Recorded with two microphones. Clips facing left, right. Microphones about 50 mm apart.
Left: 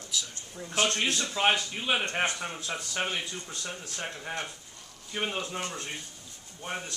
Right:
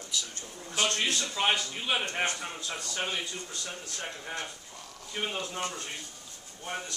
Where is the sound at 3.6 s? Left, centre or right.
Left.